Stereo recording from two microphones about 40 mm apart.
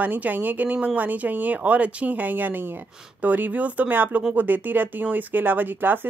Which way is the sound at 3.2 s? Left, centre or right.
Right.